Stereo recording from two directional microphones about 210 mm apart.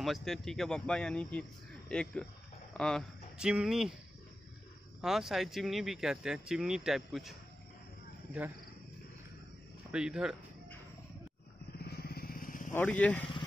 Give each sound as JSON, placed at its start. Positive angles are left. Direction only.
{"t": 0.0, "sound": "speech", "side_deg": 0}
{"t": 5.0, "sound": "speech", "side_deg": 0}
{"t": 9.8, "sound": "speech", "side_deg": -5}
{"t": 11.8, "sound": "vehicle", "side_deg": 50}
{"t": 12.7, "sound": "speech", "side_deg": 5}